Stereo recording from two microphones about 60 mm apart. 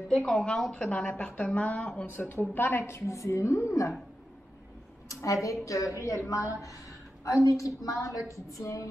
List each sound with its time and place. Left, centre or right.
0.1 s a woman's voice: centre
2.0 s a woman's voice: left
5.0 s a woman's voice: left